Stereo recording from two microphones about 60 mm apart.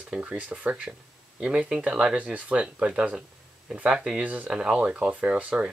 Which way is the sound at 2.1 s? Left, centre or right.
Right.